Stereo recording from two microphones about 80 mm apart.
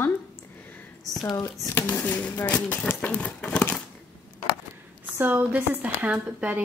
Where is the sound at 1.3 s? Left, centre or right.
Left.